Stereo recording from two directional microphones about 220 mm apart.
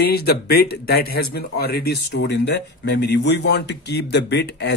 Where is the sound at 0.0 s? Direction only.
45° left (ahead or behind).